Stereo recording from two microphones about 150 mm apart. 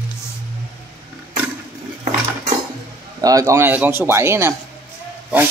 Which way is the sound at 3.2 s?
20° right (ahead or behind).